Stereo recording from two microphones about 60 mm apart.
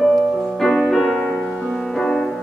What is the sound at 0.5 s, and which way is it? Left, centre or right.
Music, centre.